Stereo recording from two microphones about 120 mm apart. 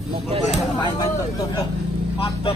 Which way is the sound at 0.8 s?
35° left (ahead or behind).